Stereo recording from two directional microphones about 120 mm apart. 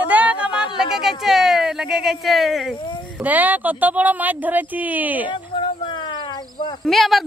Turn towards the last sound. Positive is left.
turn(degrees=0)  # may be behind; listen again after turning